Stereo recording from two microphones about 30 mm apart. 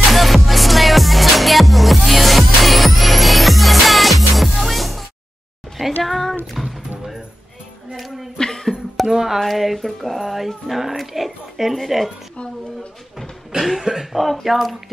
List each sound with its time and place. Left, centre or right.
0.1 s music: centre
6.0 s a sound: centre
6.6 s music: centre
7.9 s music: centre
8.4 s music: centre
9.0 s a sound: centre
9.4 s speech: centre
13.7 s speech: centre